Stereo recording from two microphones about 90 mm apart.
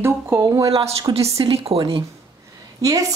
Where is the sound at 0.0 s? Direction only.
30° right (ahead or behind).